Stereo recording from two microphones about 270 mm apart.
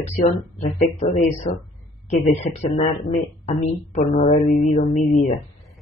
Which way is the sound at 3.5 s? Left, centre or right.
Left.